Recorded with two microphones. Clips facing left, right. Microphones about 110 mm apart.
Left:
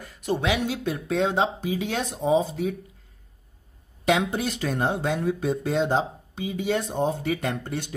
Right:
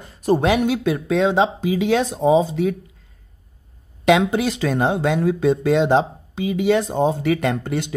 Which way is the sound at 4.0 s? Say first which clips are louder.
Right 7 dB; 90° right.